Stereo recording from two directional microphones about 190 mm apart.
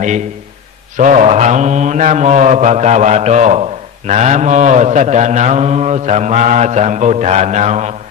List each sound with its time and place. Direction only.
0.9 s mantra: 40° right (ahead or behind)